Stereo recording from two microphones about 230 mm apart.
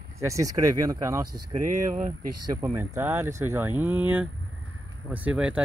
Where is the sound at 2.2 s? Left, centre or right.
Right.